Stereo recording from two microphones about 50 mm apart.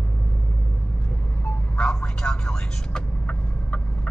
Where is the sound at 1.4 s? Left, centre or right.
Centre.